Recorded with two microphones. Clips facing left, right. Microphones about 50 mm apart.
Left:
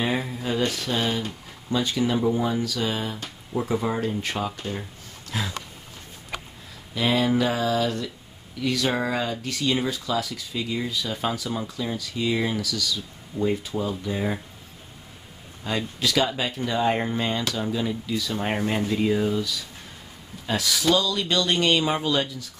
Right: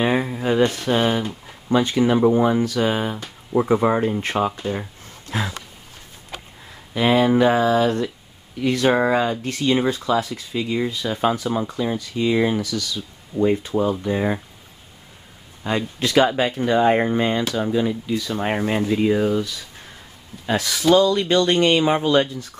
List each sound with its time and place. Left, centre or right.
0.0 s speech: right
6.9 s speech: right
15.6 s speech: right